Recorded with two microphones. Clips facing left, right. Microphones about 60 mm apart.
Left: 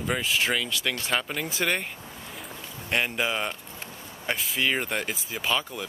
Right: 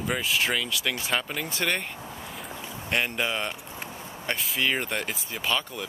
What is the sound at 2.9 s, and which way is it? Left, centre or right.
Speech, centre.